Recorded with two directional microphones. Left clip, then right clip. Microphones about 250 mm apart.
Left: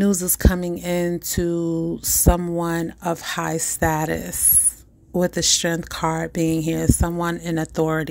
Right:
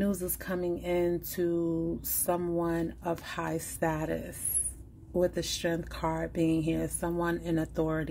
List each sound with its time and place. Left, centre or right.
0.0 s speech: left